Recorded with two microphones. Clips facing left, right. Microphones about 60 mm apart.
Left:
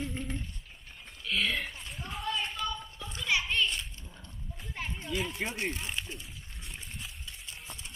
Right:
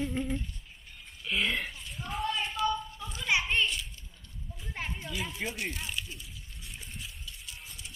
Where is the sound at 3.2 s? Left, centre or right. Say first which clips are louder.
Right 1 dB; right.